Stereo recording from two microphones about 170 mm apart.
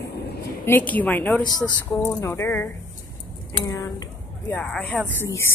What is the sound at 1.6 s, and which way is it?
Speech, 20° left (ahead or behind).